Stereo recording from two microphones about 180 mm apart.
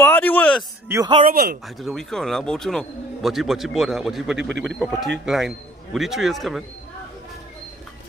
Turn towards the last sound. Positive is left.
turn(degrees=0)  # may be behind; listen again after turning